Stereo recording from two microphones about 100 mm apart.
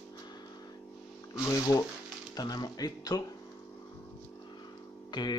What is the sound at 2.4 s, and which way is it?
Speech, 40° left (ahead or behind).